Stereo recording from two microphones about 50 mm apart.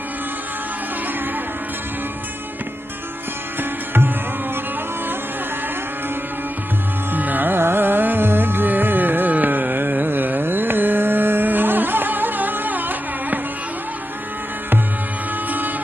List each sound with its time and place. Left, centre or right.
7.1 s carnatic music: right